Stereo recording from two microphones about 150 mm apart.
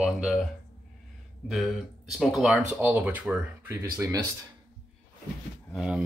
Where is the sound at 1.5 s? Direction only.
Centre (ahead or behind).